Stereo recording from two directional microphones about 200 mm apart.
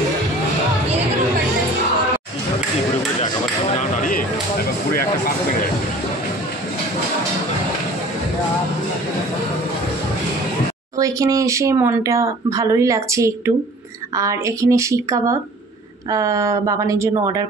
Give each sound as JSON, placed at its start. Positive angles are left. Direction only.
{"t": 4.0, "sound": "a sound", "side_deg": 45}
{"t": 4.9, "sound": "music", "side_deg": 45}
{"t": 11.0, "sound": "speech", "side_deg": -15}